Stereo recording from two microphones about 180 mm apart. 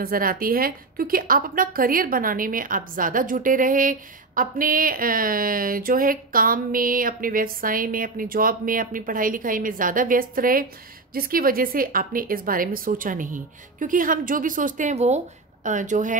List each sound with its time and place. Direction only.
0.0 s a woman's voice: 55° right (ahead or behind)